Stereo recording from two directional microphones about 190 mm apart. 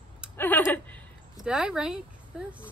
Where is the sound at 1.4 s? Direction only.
5° right (ahead or behind).